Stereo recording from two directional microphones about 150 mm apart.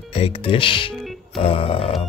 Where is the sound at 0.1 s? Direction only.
40° left (ahead or behind).